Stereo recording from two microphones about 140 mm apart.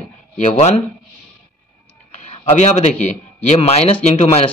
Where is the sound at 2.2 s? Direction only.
55° left (ahead or behind).